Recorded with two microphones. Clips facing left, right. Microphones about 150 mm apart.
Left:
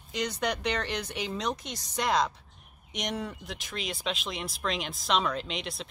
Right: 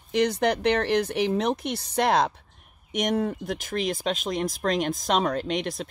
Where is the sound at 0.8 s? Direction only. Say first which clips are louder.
Right 10 dB; 55° right (ahead or behind).